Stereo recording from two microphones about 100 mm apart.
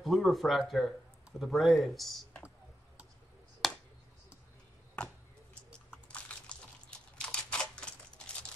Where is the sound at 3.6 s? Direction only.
Centre (ahead or behind).